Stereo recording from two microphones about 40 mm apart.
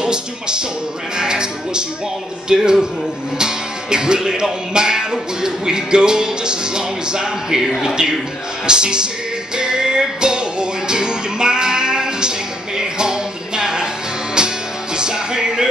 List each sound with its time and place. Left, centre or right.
0.0 s speech: centre
9.6 s music: centre
15.0 s music: centre